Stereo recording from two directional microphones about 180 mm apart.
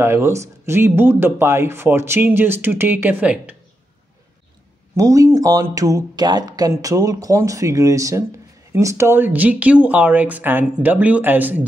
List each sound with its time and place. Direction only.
0.0 s speech: 15° right (ahead or behind)
4.9 s speech: 20° right (ahead or behind)